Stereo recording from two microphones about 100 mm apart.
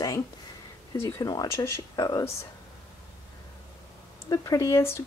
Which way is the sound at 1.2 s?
40° left (ahead or behind).